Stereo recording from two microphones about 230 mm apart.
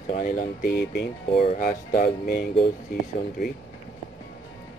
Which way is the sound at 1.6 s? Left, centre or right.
Left.